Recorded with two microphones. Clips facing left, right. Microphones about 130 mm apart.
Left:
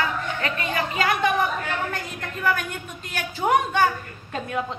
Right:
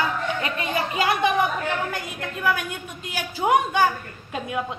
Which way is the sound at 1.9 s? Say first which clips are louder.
Right 1 dB; 5° right (ahead or behind).